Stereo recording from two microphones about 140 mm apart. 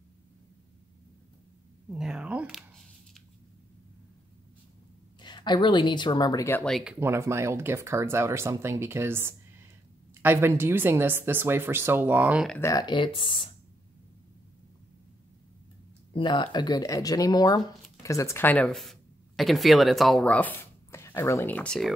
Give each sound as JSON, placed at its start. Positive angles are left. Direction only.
{"t": 1.9, "sound": "speech", "side_deg": -5}
{"t": 5.2, "sound": "speech", "side_deg": 30}
{"t": 6.6, "sound": "speech", "side_deg": 0}
{"t": 7.0, "sound": "speech", "side_deg": -20}
{"t": 12.5, "sound": "speech", "side_deg": 20}
{"t": 12.8, "sound": "speech", "side_deg": 35}
{"t": 16.1, "sound": "speech", "side_deg": 35}